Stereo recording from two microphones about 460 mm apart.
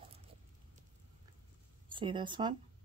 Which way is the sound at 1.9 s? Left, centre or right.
Centre.